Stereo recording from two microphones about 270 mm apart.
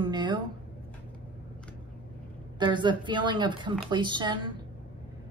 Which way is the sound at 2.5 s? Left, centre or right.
Centre.